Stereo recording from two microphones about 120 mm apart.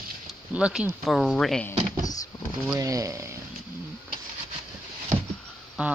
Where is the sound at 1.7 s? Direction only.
90° right.